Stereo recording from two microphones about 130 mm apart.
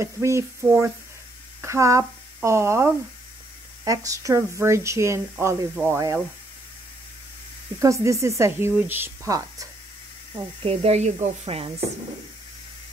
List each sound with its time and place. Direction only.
0.0 s a woman's voice: 20° right (ahead or behind)
7.8 s a woman's voice: 25° right (ahead or behind)
10.6 s speech: 50° right (ahead or behind)